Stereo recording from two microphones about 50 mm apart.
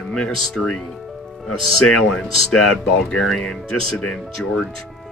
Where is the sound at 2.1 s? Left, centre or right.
Centre.